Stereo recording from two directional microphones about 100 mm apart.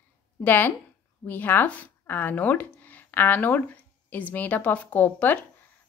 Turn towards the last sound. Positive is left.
turn(degrees=15)  # may be behind; listen again after turning